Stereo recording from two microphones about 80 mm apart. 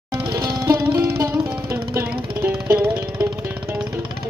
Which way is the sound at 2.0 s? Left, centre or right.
Right.